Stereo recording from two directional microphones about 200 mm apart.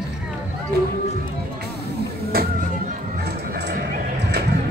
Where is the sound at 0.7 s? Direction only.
55° right (ahead or behind).